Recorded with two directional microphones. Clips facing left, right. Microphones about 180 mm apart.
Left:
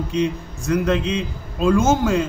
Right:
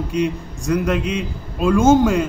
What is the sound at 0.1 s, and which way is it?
A man's voice, 15° right (ahead or behind).